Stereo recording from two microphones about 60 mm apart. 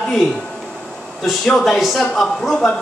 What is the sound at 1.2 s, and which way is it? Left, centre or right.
Speech, centre.